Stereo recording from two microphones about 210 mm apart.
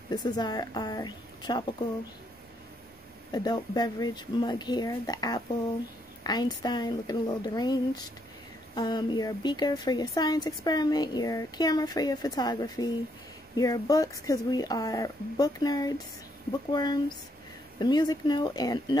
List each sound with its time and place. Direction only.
0.1 s speech: 20° left (ahead or behind)
3.3 s speech: 20° left (ahead or behind)